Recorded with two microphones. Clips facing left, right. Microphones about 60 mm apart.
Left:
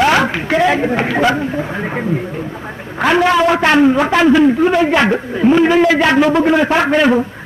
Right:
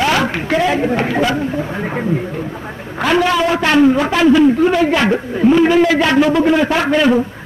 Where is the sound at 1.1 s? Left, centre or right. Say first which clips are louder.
Left 2 dB; left.